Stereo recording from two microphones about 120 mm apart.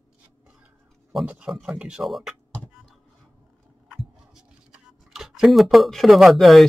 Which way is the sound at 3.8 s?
5° right (ahead or behind).